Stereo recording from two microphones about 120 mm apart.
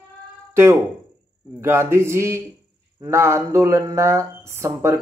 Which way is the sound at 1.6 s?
20° right (ahead or behind).